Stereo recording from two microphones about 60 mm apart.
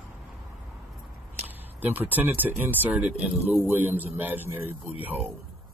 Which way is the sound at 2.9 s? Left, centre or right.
Centre.